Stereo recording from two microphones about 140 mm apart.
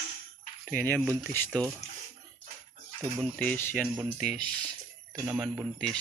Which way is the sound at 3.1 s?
5° left (ahead or behind).